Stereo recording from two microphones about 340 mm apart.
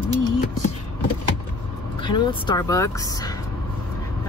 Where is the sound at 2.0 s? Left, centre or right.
Centre.